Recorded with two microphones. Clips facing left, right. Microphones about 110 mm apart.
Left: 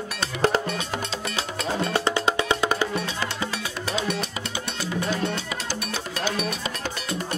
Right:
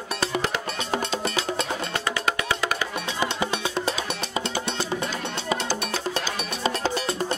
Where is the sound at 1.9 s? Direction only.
25° left (ahead or behind).